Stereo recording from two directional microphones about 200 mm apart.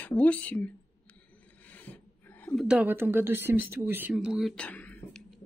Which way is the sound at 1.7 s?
10° left (ahead or behind).